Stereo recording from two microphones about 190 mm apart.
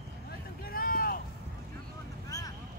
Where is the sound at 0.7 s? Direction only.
50° left (ahead or behind).